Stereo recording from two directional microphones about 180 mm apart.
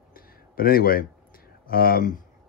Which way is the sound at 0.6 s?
55° left (ahead or behind).